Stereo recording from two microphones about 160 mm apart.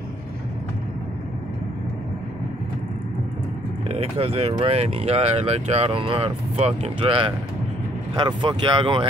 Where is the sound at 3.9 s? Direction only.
40° right (ahead or behind).